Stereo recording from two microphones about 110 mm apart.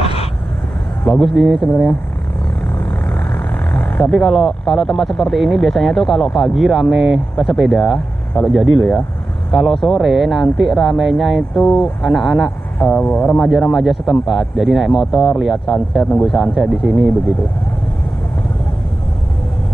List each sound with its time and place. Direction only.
0.0 s vehicle: 65° left (ahead or behind)
1.0 s speech: 10° left (ahead or behind)
1.3 s speech: centre (ahead or behind)
3.7 s a sound: 10° left (ahead or behind)
4.1 s speech: centre (ahead or behind)
12.7 s speech: 10° left (ahead or behind)
13.4 s speech: centre (ahead or behind)